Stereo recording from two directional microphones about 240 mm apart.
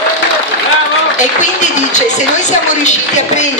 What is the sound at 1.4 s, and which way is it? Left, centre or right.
A woman's voice, left.